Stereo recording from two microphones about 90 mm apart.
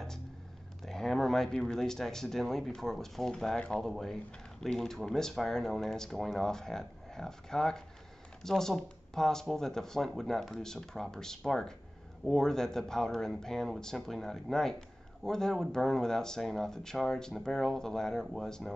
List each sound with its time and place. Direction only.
0.8 s speech: 5° left (ahead or behind)